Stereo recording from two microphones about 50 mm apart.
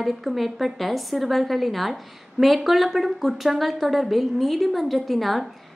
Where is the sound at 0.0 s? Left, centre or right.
Centre.